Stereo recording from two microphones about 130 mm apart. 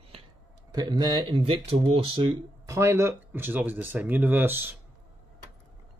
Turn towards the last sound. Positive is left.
turn(degrees=-15)  # may be behind; listen again after turning